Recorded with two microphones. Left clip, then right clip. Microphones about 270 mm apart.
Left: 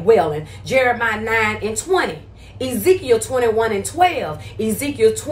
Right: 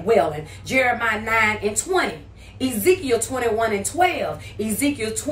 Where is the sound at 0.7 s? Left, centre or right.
Centre.